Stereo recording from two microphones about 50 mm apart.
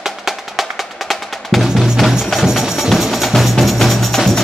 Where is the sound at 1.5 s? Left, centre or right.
Centre.